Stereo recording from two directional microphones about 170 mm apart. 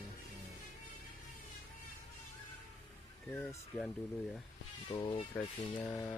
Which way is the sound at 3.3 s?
10° left (ahead or behind).